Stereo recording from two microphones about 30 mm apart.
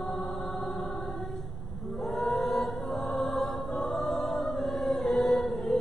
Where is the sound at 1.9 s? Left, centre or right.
Centre.